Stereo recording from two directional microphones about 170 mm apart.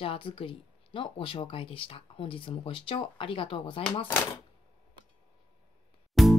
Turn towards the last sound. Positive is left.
turn(degrees=0)  # may be behind; listen again after turning